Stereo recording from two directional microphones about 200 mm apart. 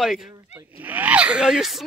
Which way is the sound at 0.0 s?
Centre (ahead or behind).